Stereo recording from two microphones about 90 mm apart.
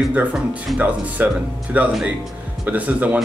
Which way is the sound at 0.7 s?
15° right (ahead or behind).